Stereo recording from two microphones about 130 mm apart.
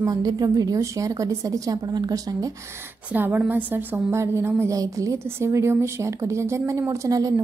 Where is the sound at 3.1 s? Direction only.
15° right (ahead or behind).